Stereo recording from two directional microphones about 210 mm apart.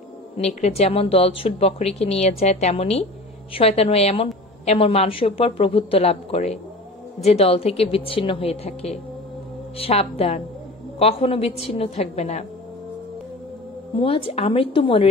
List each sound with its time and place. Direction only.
0.4 s speech: 30° left (ahead or behind)
13.9 s speech: 25° left (ahead or behind)